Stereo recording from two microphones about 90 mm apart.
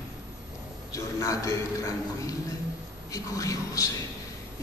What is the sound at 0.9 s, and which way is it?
A woman's voice, 40° left (ahead or behind).